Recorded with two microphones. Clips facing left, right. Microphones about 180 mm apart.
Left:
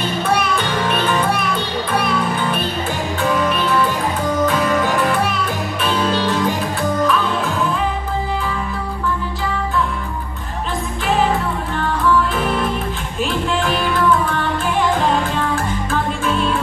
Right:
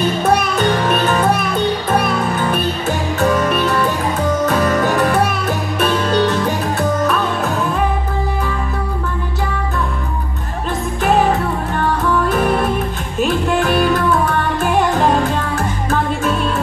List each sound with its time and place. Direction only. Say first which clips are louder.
0.2 s music: right 1 dB; 40° right (ahead or behind)
11.1 s music: right 3 dB; 50° right (ahead or behind)